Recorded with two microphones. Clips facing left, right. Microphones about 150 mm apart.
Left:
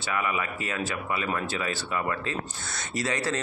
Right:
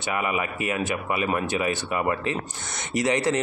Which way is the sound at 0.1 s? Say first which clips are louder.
Right 3 dB; 20° right (ahead or behind).